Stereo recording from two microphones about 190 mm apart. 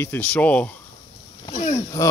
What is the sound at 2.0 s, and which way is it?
Speech, 15° left (ahead or behind).